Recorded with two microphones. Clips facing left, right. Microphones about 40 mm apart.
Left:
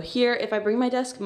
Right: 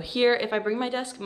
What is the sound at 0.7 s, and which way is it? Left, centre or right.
Speech, right.